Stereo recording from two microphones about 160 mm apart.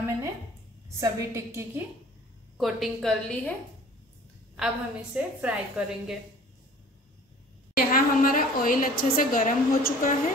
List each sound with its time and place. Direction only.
0.9 s a woman's voice: 20° right (ahead or behind)
2.5 s a woman's voice: centre (ahead or behind)
4.6 s a woman's voice: 5° right (ahead or behind)
7.7 s a woman's voice: 60° left (ahead or behind)